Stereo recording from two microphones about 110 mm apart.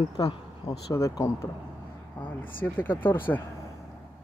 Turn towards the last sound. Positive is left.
turn(degrees=20)  # may be behind; listen again after turning